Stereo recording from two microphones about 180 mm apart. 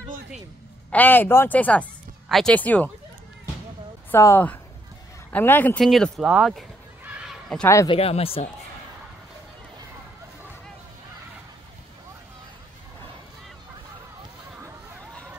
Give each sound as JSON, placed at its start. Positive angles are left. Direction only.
{"t": 0.9, "sound": "speech", "side_deg": 10}
{"t": 4.1, "sound": "speech", "side_deg": 15}
{"t": 7.2, "sound": "a sound", "side_deg": 5}
{"t": 7.9, "sound": "speech", "side_deg": 30}